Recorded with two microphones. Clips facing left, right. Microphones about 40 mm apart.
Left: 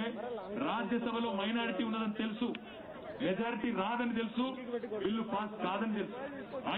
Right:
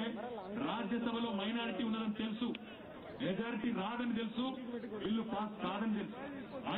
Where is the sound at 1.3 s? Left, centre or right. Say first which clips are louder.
Left 4 dB; left.